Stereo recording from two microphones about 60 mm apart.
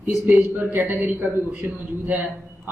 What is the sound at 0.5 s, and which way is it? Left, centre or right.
A man's voice, right.